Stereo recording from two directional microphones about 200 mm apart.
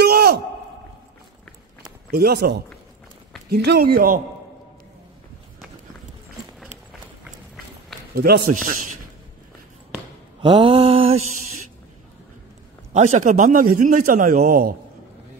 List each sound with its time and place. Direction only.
0.0 s a sound: 50° right (ahead or behind)
2.0 s speech: 50° right (ahead or behind)
8.1 s a man's voice: 50° right (ahead or behind)
10.4 s mantra: 25° right (ahead or behind)
12.9 s a man's voice: 35° right (ahead or behind)